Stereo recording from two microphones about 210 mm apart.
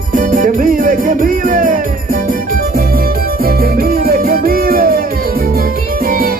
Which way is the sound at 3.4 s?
45° right (ahead or behind).